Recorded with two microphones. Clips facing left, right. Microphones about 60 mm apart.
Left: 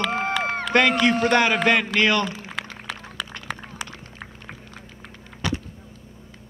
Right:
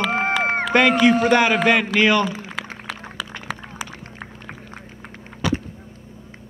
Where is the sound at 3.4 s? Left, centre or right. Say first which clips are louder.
Right 2 dB; centre.